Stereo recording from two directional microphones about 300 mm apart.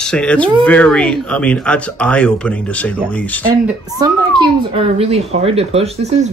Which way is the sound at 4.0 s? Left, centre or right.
Centre.